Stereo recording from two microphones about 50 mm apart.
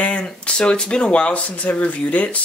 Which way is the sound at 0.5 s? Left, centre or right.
Centre.